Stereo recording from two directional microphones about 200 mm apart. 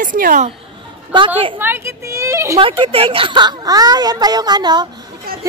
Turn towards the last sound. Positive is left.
turn(degrees=-20)  # may be behind; listen again after turning